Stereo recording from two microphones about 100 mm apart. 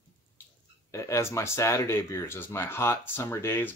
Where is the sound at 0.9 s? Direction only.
30° left (ahead or behind).